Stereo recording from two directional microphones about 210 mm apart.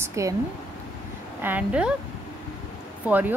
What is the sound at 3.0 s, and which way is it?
Speech, 10° right (ahead or behind).